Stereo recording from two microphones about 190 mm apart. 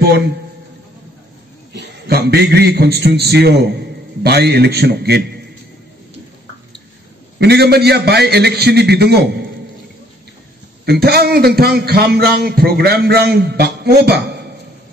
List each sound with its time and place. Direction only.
1.7 s a man's voice: 60° right (ahead or behind)
7.3 s a man's voice: 60° right (ahead or behind)
10.9 s a man's voice: 55° right (ahead or behind)